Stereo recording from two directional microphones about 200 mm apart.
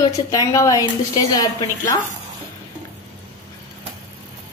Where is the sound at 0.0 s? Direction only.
15° left (ahead or behind).